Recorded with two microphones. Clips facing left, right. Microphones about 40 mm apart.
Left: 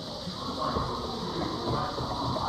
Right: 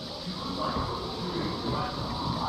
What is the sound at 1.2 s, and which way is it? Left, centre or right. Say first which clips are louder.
Music: even; right.